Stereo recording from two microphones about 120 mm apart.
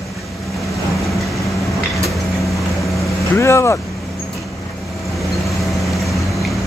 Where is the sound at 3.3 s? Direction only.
25° left (ahead or behind).